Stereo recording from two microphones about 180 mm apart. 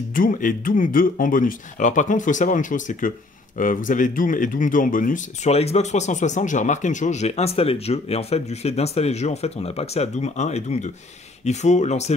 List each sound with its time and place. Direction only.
0.1 s speech: 50° left (ahead or behind)